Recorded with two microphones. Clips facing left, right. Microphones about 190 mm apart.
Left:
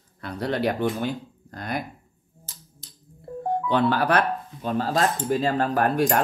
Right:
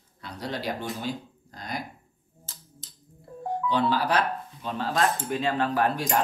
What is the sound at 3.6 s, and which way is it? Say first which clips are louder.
Speech: left 3 dB; 60° left (ahead or behind).